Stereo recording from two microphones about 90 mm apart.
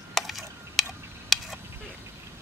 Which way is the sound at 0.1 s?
Centre (ahead or behind).